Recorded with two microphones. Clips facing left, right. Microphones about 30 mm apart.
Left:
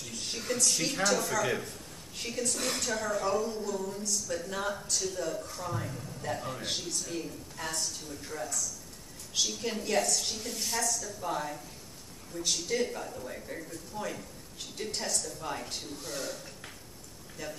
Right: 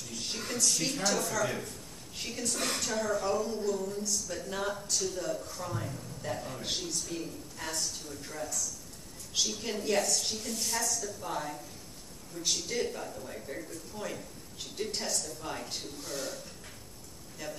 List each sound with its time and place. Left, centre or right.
0.1 s speech: centre
1.4 s a man's voice: centre
2.1 s speech: centre